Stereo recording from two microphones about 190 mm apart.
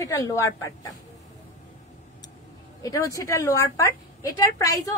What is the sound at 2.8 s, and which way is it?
A woman's voice, 20° left (ahead or behind).